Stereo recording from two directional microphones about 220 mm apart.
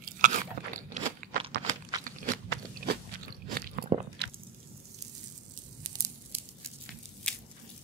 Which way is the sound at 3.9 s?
30° right (ahead or behind).